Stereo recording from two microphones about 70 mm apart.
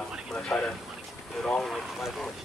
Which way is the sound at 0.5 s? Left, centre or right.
Centre.